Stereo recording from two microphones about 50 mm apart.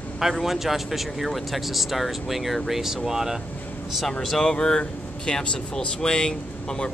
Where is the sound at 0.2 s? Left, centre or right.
Centre.